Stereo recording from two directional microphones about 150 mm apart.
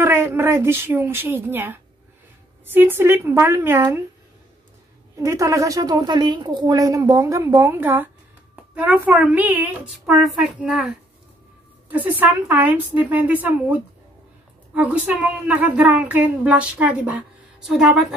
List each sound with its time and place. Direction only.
0.0 s a woman's voice: 15° right (ahead or behind)
5.1 s a woman's voice: 20° right (ahead or behind); by 18.0 s 5° right (ahead or behind)